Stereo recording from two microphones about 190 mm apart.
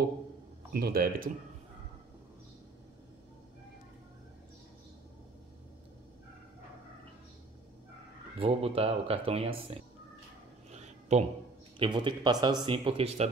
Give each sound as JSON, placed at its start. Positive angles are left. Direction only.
{"t": 0.7, "sound": "speech", "side_deg": -55}
{"t": 8.4, "sound": "speech", "side_deg": -30}
{"t": 10.7, "sound": "a sound", "side_deg": -35}
{"t": 11.8, "sound": "speech", "side_deg": -25}